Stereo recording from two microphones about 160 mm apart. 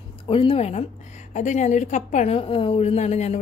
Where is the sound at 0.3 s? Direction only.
35° left (ahead or behind).